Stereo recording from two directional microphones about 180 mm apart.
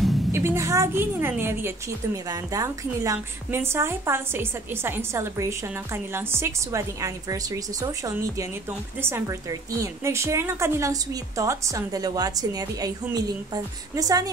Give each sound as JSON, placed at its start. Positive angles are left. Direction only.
{"t": 0.3, "sound": "a woman's voice", "side_deg": -15}